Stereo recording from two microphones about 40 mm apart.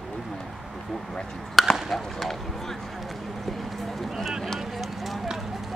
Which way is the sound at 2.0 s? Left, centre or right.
Centre.